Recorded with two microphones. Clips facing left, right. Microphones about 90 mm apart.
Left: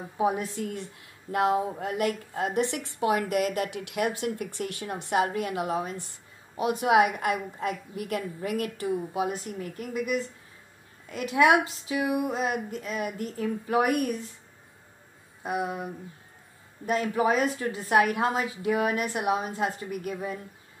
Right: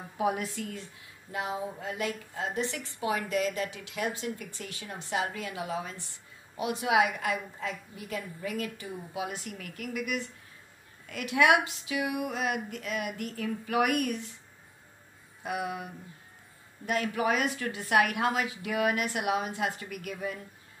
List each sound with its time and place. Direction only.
0.2 s a woman's voice: 30° left (ahead or behind)
1.3 s a woman's voice: 70° left (ahead or behind)
9.2 s a woman's voice: 40° left (ahead or behind)
15.4 s a woman's voice: 35° left (ahead or behind)